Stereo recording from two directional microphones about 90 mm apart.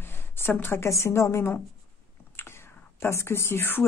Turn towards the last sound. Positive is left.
turn(degrees=25)  # may be behind; listen again after turning